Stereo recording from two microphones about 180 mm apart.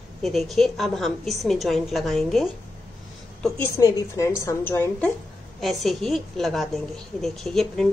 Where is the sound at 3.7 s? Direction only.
20° left (ahead or behind).